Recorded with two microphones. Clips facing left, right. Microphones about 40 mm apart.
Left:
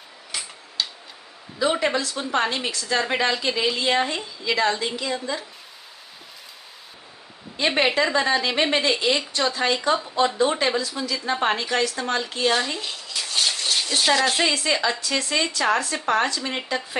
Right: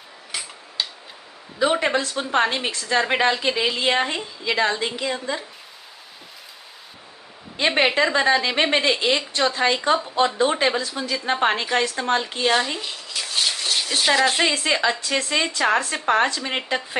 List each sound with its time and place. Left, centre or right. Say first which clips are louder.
0.3 s tick-tock: right 1 dB; centre
1.6 s a woman's voice: right 2 dB; right
7.6 s a woman's voice: right 2 dB; right
14.5 s speech: right 2 dB; right